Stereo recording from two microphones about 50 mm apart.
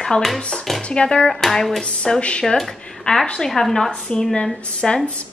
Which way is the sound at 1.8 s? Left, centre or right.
Centre.